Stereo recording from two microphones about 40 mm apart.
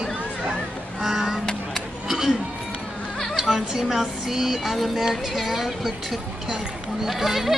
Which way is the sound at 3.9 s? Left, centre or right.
Centre.